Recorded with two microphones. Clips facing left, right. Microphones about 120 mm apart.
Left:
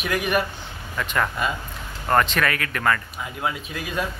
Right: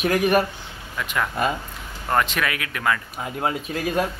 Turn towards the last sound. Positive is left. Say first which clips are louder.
# right 5 dB
turn(degrees=-45)  # may be behind; listen again after turning